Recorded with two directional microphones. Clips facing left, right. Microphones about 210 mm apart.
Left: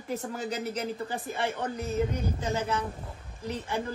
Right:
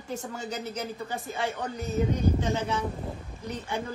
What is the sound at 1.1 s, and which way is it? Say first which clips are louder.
A man's voice: even; centre (ahead or behind).